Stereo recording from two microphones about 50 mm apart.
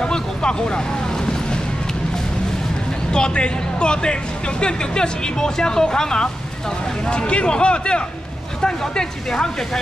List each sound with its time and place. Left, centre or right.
0.0 s vehicle: centre
3.1 s speech: centre